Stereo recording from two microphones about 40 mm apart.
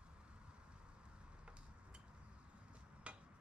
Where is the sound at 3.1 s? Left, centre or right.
Right.